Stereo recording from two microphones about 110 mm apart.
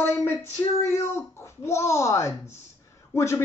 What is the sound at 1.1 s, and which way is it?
Speech, 25° left (ahead or behind).